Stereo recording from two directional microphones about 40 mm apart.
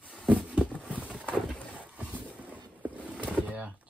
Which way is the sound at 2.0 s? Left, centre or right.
Right.